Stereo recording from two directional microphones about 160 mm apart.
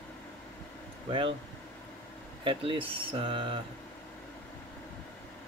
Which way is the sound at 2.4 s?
30° right (ahead or behind).